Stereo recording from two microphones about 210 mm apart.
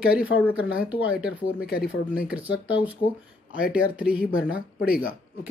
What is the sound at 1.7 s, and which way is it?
Speech, 45° left (ahead or behind).